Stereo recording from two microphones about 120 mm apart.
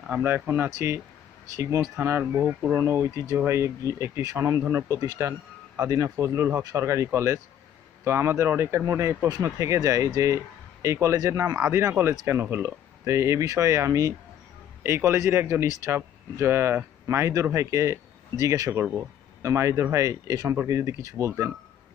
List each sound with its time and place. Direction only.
0.0 s speech: 15° right (ahead or behind)